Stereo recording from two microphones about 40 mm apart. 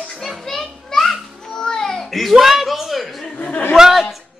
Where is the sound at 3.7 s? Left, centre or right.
Centre.